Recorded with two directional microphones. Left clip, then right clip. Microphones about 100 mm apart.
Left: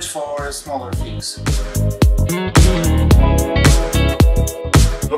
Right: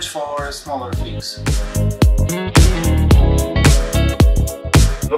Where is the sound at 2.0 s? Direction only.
Centre (ahead or behind).